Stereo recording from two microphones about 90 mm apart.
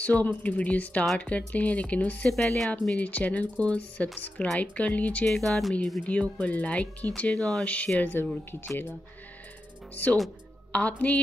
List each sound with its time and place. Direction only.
0.0 s speech: 15° left (ahead or behind)
3.0 s speech: 15° left (ahead or behind)
6.0 s speech: 15° left (ahead or behind)
10.7 s speech: 15° left (ahead or behind)